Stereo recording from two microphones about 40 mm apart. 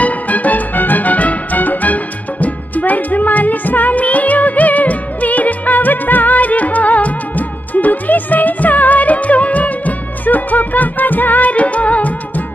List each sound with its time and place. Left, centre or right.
0.0 s music: left